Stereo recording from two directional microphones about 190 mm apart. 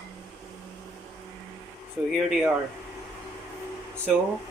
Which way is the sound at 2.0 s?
10° right (ahead or behind).